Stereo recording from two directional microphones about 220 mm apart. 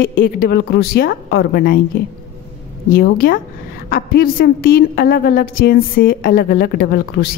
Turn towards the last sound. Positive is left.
turn(degrees=45)  # may be behind; listen again after turning